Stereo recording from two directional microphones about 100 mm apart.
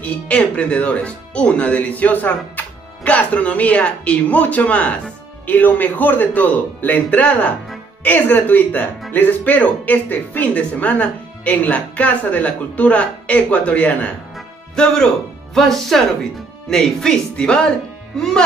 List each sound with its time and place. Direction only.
0.0 s speech: 15° left (ahead or behind)
14.3 s music: 5° left (ahead or behind)
15.5 s speech: centre (ahead or behind)